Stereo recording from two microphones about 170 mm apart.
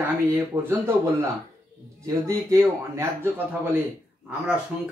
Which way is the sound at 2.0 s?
20° right (ahead or behind).